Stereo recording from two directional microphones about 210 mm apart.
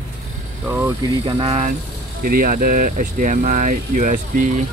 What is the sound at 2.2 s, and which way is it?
Speech, 45° right (ahead or behind).